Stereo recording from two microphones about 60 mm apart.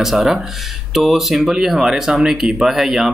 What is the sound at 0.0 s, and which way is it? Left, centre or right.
Speech, centre.